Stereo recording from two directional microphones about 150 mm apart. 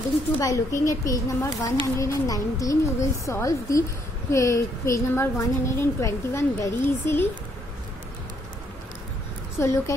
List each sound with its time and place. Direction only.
0.4 s a woman's voice: 20° left (ahead or behind)
9.6 s a woman's voice: 20° left (ahead or behind)